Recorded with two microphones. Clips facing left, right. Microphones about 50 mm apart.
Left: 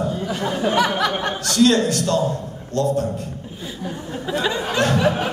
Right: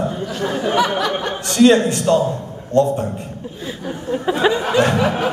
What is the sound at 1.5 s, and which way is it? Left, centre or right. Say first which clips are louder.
A man's voice: right 4 dB; right.